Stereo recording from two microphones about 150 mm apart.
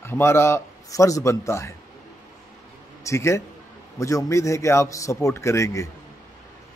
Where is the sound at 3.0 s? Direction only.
20° left (ahead or behind).